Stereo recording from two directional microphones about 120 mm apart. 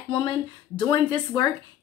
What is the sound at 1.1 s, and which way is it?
Speech, 35° left (ahead or behind).